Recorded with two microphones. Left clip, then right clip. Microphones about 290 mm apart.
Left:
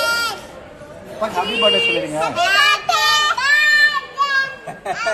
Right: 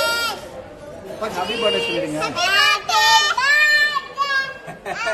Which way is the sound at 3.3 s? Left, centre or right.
Right.